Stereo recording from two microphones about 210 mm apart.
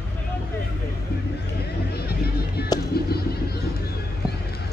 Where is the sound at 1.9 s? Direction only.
50° left (ahead or behind).